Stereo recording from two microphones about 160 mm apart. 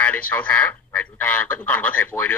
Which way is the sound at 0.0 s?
10° left (ahead or behind).